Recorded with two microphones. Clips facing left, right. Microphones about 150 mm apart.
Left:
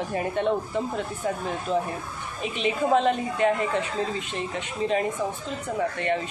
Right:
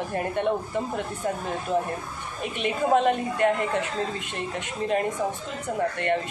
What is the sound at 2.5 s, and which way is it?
Speech, 50° right (ahead or behind).